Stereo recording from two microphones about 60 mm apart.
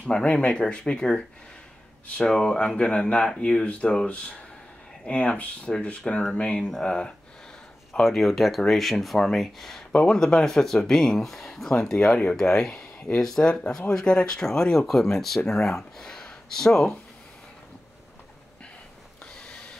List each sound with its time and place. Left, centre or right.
0.0 s speech: centre
6.6 s speech: centre
6.9 s speech: centre